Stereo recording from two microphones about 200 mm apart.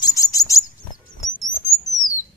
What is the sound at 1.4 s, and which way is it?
Bird, centre (ahead or behind).